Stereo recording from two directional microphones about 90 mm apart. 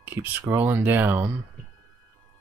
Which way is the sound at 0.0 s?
20° right (ahead or behind).